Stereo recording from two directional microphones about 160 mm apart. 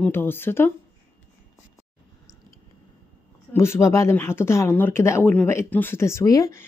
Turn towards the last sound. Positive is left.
turn(degrees=20)  # may be behind; listen again after turning